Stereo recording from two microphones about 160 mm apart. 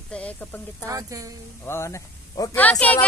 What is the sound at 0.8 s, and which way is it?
Speech, 20° right (ahead or behind).